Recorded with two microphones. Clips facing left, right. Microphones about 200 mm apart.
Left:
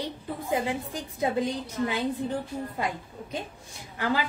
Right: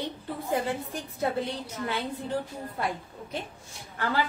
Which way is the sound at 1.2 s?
15° left (ahead or behind).